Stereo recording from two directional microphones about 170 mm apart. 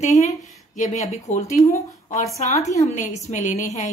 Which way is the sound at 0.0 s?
45° left (ahead or behind).